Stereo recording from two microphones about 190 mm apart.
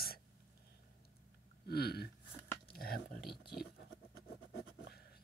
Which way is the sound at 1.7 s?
55° left (ahead or behind).